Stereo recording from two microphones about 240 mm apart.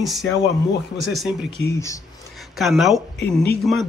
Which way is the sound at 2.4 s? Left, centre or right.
Centre.